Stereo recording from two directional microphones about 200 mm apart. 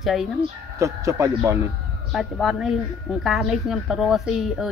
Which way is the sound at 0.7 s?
15° right (ahead or behind).